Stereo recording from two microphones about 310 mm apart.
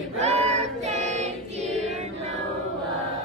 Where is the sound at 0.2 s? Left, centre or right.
Right.